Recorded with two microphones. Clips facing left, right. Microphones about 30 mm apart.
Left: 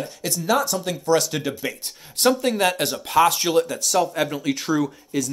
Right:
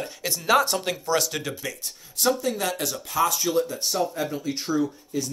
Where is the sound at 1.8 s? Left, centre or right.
Left.